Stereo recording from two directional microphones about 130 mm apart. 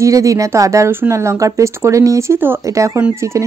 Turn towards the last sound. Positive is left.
turn(degrees=-20)  # may be behind; listen again after turning